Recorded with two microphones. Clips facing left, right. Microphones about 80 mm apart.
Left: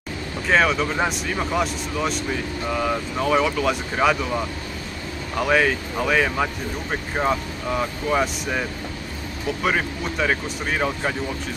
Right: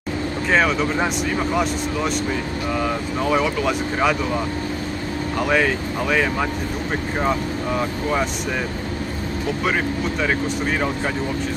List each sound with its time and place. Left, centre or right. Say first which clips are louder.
0.5 s speech: even; centre
5.4 s speech: even; centre
9.6 s speech: even; centre